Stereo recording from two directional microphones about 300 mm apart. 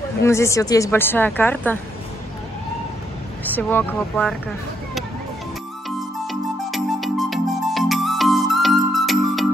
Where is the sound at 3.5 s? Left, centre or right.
Centre.